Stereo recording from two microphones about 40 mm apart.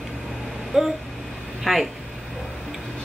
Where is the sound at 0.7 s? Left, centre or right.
Centre.